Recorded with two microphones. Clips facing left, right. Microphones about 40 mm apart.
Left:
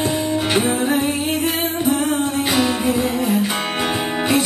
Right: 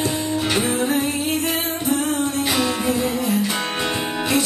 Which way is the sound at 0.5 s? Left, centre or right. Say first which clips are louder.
Left 3 dB; centre.